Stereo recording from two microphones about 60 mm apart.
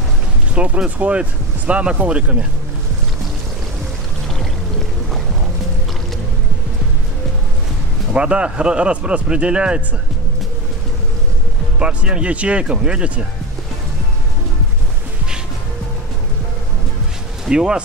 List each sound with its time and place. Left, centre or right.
0.6 s speech: right
8.1 s a man's voice: centre
11.8 s speech: centre
17.5 s a man's voice: centre